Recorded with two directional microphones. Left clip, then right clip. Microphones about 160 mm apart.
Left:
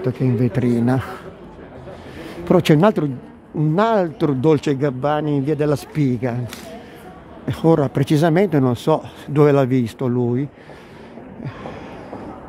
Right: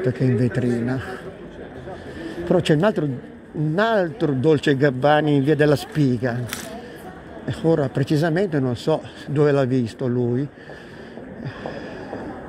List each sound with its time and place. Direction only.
0.0 s speech: 20° left (ahead or behind)
0.5 s a man's voice: 35° left (ahead or behind)
2.4 s a man's voice: 45° left (ahead or behind)
3.7 s a man's voice: 30° left (ahead or behind)
4.6 s speech: 20° left (ahead or behind)
5.9 s speech: 30° left (ahead or behind)
7.4 s a man's voice: 50° left (ahead or behind)
11.4 s a sound: 30° left (ahead or behind)